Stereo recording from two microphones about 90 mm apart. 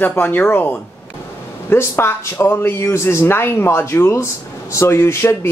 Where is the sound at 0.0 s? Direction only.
20° left (ahead or behind).